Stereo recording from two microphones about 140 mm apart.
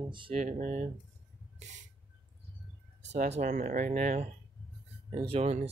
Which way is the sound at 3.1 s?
55° right (ahead or behind).